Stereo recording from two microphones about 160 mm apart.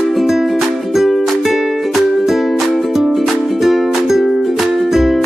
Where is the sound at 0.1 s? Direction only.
Centre (ahead or behind).